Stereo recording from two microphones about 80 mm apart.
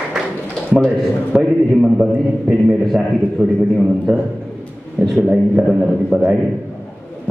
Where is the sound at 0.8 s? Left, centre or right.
Centre.